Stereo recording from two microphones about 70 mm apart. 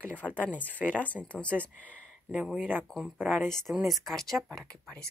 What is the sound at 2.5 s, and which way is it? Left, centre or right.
Speech, centre.